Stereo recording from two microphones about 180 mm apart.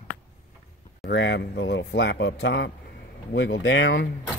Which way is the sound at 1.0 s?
75° left (ahead or behind).